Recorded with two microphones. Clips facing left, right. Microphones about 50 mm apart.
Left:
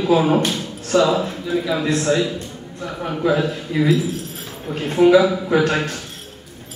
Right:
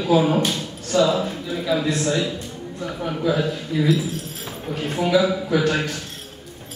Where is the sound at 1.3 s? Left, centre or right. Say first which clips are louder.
Left 2 dB; centre.